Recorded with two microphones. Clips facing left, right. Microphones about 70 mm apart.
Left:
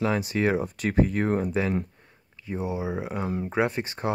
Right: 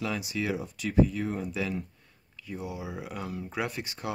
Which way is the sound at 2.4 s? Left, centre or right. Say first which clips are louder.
Left 7 dB; left.